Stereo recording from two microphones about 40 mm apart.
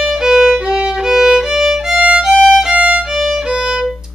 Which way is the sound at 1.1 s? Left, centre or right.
Centre.